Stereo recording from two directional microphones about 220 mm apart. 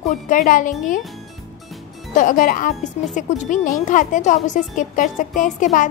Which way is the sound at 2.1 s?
35° left (ahead or behind).